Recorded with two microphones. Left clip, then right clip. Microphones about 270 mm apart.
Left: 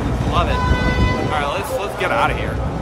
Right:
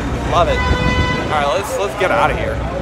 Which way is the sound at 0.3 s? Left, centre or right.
Centre.